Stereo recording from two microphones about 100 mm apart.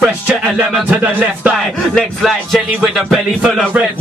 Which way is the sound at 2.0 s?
Centre (ahead or behind).